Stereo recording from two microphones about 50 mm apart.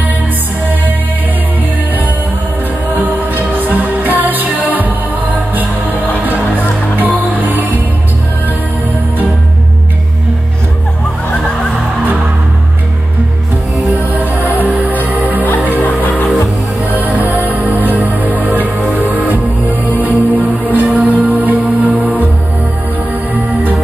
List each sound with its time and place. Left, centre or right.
2.9 s music: right
7.2 s music: right
14.4 s music: left
14.8 s music: right
15.8 s music: left
16.9 s music: right